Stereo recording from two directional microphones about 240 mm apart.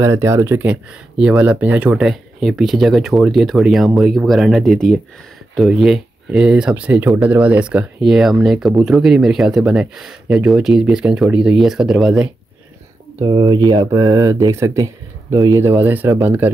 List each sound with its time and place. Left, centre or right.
0.0 s speech: centre
13.2 s speech: centre